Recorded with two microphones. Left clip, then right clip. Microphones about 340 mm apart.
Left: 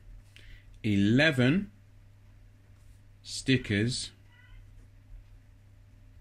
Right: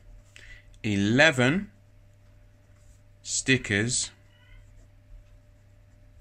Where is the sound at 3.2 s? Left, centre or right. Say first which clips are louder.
Right 5 dB; centre.